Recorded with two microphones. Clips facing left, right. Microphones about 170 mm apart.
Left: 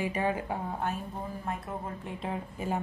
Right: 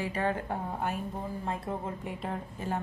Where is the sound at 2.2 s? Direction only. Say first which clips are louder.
Left 1 dB; 5° left (ahead or behind).